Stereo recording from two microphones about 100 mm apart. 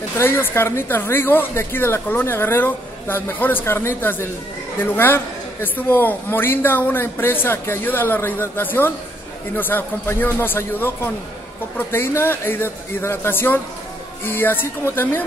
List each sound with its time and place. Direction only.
0.2 s a man's voice: 20° left (ahead or behind)